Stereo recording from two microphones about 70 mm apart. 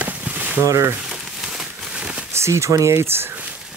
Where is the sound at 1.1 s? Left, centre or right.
Centre.